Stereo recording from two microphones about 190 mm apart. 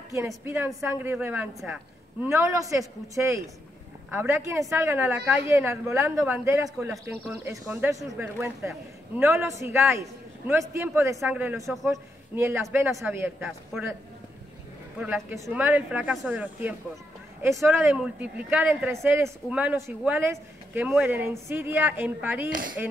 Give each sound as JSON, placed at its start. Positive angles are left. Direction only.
{"t": 0.8, "sound": "speech", "side_deg": -10}
{"t": 11.7, "sound": "a man's voice", "side_deg": 0}
{"t": 12.4, "sound": "speech", "side_deg": -10}
{"t": 15.0, "sound": "speech", "side_deg": -5}
{"t": 22.5, "sound": "speech", "side_deg": -45}